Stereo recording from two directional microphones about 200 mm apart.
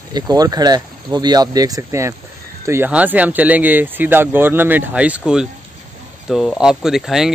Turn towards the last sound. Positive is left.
turn(degrees=0)  # may be behind; listen again after turning